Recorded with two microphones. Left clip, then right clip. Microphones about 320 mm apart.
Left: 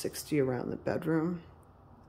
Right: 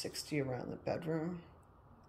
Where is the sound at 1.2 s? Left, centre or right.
Centre.